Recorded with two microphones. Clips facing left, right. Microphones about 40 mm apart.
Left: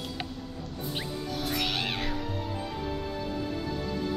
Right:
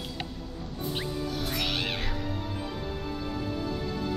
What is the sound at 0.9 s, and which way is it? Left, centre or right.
Music, centre.